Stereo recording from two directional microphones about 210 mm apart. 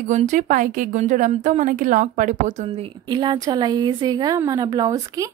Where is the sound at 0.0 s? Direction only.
35° right (ahead or behind).